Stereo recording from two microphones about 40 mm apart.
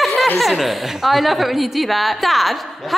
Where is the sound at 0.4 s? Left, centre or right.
Centre.